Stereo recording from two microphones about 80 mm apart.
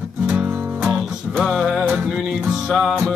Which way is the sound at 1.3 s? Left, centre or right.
Centre.